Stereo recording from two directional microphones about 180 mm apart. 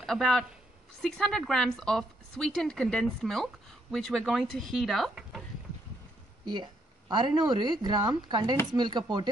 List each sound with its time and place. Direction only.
0.0 s a woman's voice: centre (ahead or behind)
6.4 s a woman's voice: 25° right (ahead or behind)